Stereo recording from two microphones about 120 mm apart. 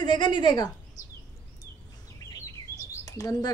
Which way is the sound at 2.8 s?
25° left (ahead or behind).